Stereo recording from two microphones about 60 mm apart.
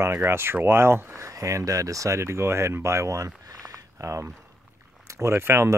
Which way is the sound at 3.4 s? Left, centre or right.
Right.